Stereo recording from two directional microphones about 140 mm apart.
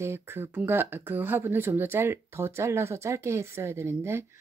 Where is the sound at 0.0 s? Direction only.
20° right (ahead or behind).